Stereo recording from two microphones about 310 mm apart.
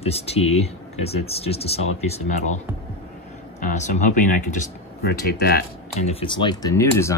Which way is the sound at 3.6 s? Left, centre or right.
Left.